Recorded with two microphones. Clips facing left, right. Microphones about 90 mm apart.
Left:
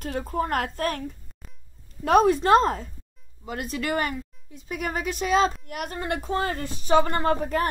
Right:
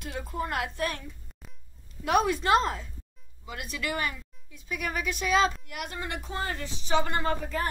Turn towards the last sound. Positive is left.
turn(degrees=45)  # may be behind; listen again after turning